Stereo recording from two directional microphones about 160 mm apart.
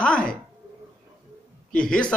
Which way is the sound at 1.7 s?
5° left (ahead or behind).